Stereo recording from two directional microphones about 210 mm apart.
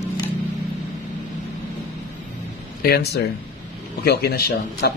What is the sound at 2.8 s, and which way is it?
A man's voice, 50° left (ahead or behind).